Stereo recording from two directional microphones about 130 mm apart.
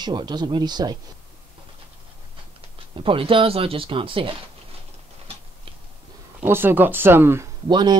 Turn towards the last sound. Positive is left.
turn(degrees=-35)  # may be behind; listen again after turning